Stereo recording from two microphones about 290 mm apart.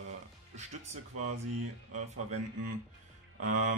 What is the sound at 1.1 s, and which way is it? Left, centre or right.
Speech, right.